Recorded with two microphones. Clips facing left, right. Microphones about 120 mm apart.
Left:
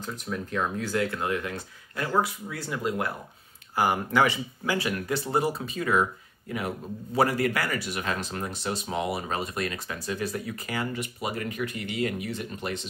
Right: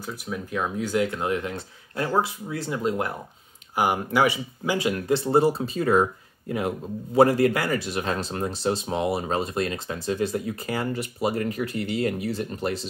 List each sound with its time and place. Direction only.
0.0 s speech: 10° right (ahead or behind); by 3.1 s 25° right (ahead or behind)
3.7 s speech: 15° right (ahead or behind); by 6.0 s 35° right (ahead or behind)
7.2 s speech: 30° right (ahead or behind)